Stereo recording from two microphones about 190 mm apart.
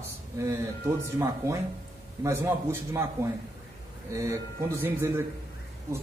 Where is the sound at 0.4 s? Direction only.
20° right (ahead or behind).